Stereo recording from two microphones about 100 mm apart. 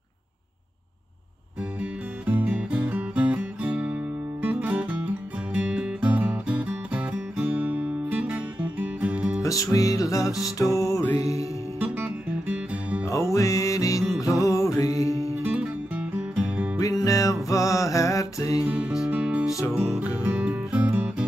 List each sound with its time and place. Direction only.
1.8 s music: 15° right (ahead or behind)
9.4 s music: 35° left (ahead or behind)
11.8 s music: 15° right (ahead or behind)
13.1 s music: 30° left (ahead or behind)
15.4 s music: 15° right (ahead or behind)
16.8 s music: 35° left (ahead or behind)
18.7 s music: 15° right (ahead or behind)